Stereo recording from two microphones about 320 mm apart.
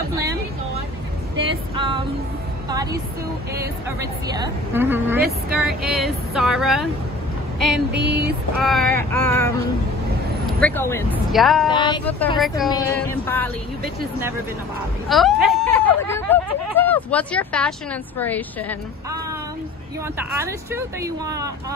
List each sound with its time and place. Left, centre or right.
1.4 s vehicle: centre
3.5 s a woman's voice: centre
10.6 s speech: centre
11.7 s speech: centre
15.0 s a sound: centre
20.2 s a woman's voice: centre